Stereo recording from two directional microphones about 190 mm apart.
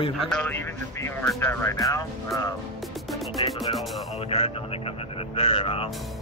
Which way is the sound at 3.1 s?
Centre (ahead or behind).